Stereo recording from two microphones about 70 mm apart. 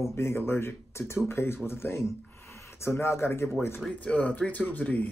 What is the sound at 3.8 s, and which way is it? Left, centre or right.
Speech, centre.